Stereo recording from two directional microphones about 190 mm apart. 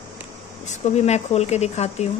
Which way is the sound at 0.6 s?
35° left (ahead or behind).